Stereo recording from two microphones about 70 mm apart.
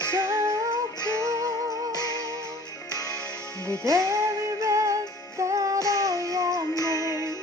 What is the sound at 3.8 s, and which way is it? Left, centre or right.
Music, right.